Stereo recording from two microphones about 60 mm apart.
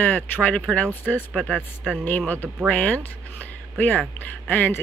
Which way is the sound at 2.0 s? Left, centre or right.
Left.